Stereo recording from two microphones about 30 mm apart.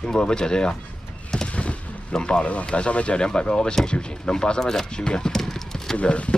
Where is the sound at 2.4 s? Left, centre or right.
Left.